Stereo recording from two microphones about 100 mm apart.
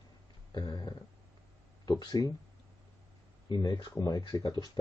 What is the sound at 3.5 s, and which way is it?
Speech, 45° left (ahead or behind).